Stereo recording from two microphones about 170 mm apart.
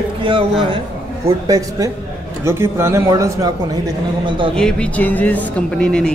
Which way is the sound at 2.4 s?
15° right (ahead or behind).